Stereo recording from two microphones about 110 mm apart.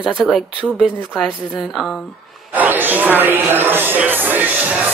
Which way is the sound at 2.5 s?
15° right (ahead or behind).